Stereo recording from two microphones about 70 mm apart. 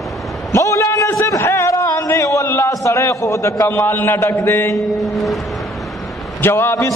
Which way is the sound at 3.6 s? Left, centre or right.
Left.